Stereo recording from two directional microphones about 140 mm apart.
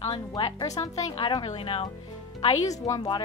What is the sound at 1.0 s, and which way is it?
Speech, 40° left (ahead or behind).